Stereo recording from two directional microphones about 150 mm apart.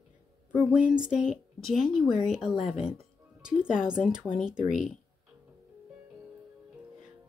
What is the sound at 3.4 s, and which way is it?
Speech, 5° right (ahead or behind).